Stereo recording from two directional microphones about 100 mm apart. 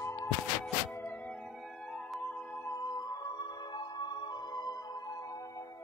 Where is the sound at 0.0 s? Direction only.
30° left (ahead or behind).